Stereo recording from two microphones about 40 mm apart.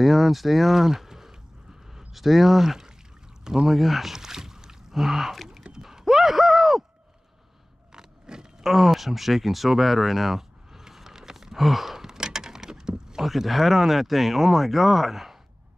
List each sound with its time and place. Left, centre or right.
0.0 s a sound: centre
3.6 s speech: centre
5.8 s clip-clop: centre
7.9 s vehicle: centre
8.6 s a sound: centre
13.3 s speech: centre